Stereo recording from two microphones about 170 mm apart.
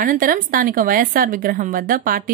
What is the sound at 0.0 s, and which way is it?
A woman's voice, 55° right (ahead or behind).